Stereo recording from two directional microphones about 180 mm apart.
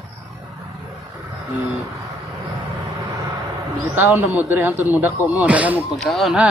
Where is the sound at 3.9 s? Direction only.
10° right (ahead or behind).